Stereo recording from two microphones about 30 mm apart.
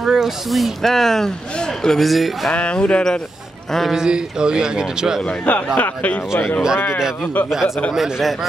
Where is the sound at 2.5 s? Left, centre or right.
Left.